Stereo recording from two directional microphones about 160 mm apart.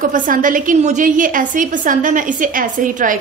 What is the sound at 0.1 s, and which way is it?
A woman's voice, 55° right (ahead or behind).